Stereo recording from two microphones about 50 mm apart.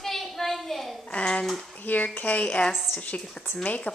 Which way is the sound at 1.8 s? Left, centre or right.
Left.